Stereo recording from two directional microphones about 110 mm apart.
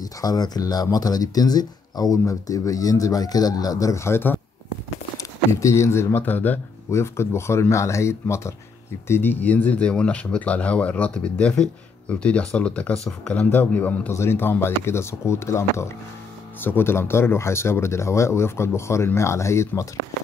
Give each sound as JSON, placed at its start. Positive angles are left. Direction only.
{"t": 0.0, "sound": "speech", "side_deg": 35}